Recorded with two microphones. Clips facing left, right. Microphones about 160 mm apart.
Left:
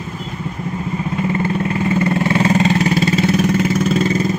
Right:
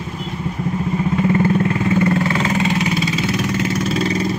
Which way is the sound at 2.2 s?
30° left (ahead or behind).